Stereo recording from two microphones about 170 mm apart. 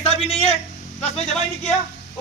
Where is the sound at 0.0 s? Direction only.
35° left (ahead or behind).